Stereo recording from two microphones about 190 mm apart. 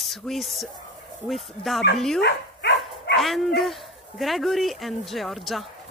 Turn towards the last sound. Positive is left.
turn(degrees=0)  # may be behind; listen again after turning